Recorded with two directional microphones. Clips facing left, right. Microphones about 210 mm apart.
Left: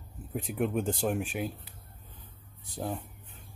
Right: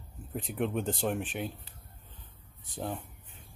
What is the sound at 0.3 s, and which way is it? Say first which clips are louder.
Speech: left 2 dB; centre (ahead or behind).